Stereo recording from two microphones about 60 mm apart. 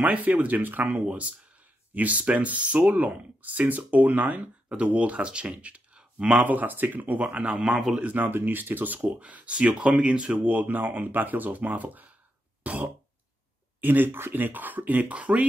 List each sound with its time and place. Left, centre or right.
0.0 s speech: right
1.0 s speech: right
6.4 s speech: right
7.6 s a man's voice: centre
8.0 s speech: right
12.6 s throat clearing: right
13.7 s speech: right